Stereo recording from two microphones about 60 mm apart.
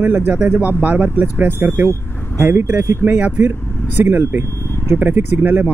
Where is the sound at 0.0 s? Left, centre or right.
Right.